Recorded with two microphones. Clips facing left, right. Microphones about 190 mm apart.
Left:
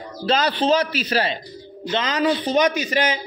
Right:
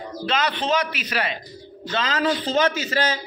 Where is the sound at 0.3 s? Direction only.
35° left (ahead or behind).